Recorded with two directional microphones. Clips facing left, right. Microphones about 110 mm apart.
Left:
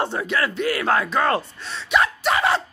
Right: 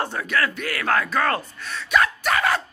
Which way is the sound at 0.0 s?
20° left (ahead or behind).